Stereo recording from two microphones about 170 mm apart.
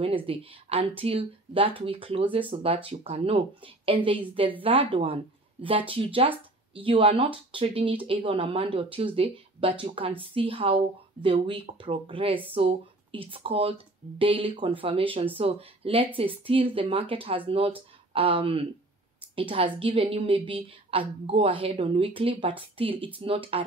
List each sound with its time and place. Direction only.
0.0 s speech: 30° right (ahead or behind)